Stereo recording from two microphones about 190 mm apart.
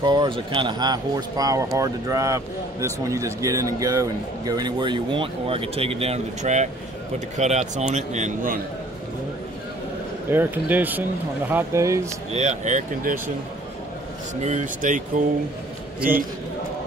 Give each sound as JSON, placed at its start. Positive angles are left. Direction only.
{"t": 0.0, "sound": "a man's voice", "side_deg": -25}
{"t": 10.3, "sound": "speech", "side_deg": -10}
{"t": 12.3, "sound": "a man's voice", "side_deg": -40}
{"t": 14.4, "sound": "speech", "side_deg": -40}